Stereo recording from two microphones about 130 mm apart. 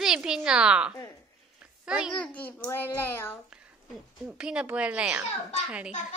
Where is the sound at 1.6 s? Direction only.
5° right (ahead or behind).